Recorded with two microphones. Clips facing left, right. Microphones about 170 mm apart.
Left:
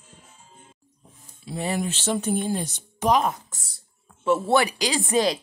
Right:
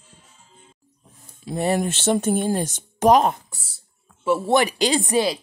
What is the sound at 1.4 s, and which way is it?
Speech, 50° right (ahead or behind).